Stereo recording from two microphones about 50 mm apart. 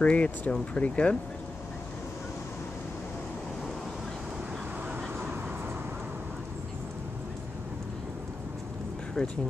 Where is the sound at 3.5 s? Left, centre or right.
Centre.